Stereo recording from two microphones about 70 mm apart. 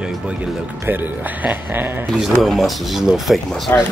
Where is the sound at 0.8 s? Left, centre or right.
Right.